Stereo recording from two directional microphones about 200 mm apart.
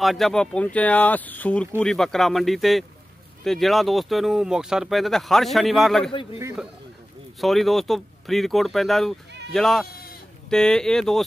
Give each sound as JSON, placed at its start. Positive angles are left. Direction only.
{"t": 0.0, "sound": "speech", "side_deg": 0}
{"t": 7.3, "sound": "speech", "side_deg": 0}
{"t": 9.8, "sound": "sheep", "side_deg": 50}
{"t": 10.5, "sound": "speech", "side_deg": 5}